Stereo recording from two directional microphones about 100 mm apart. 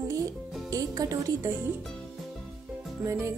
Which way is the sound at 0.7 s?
35° right (ahead or behind).